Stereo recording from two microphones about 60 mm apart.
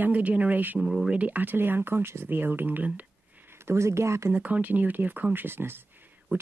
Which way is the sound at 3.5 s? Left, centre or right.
Right.